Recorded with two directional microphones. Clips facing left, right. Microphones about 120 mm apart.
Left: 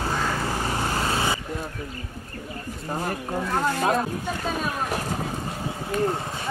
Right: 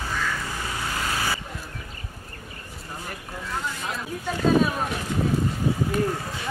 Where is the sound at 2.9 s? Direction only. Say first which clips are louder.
Left 9 dB; 50° left (ahead or behind).